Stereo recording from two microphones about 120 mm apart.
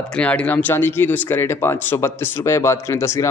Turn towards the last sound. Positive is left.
turn(degrees=25)  # may be behind; listen again after turning